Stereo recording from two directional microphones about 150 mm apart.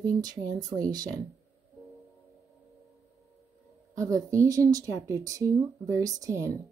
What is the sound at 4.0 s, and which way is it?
Speech, 20° right (ahead or behind).